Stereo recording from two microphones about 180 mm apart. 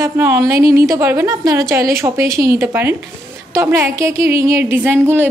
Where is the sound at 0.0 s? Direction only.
15° right (ahead or behind).